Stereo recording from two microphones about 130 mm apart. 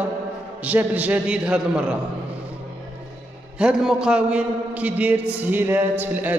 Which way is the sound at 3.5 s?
5° right (ahead or behind).